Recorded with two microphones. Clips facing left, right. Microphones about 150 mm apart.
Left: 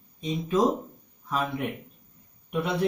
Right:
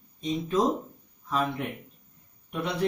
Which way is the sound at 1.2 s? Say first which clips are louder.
Right 1 dB; 10° left (ahead or behind).